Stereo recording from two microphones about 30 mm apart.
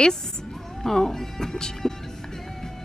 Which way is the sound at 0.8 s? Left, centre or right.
Centre.